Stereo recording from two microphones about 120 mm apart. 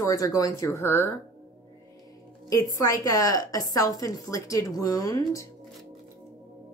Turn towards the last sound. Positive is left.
turn(degrees=30)  # may be behind; listen again after turning